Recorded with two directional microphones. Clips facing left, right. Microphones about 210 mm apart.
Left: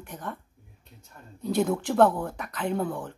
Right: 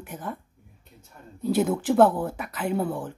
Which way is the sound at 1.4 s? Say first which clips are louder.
Right 3 dB; 5° right (ahead or behind).